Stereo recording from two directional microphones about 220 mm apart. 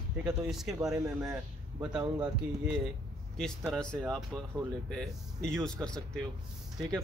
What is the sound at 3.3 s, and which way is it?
Speech, centre (ahead or behind).